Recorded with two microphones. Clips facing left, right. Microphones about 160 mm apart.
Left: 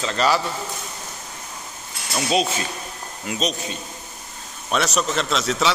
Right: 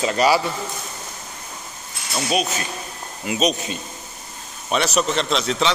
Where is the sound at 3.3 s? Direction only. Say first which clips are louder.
Right 4 dB; 10° right (ahead or behind).